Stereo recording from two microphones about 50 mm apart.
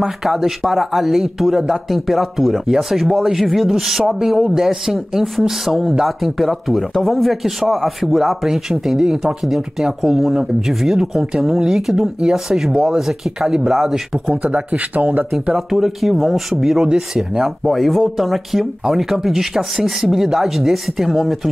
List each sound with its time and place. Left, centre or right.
0.0 s speech: centre
14.3 s speech: right
15.5 s speech: centre
17.6 s speech: centre